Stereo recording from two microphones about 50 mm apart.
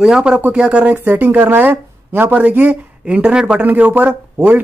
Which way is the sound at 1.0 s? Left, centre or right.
Right.